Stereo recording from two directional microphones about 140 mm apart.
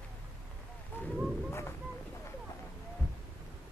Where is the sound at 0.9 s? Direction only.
15° left (ahead or behind).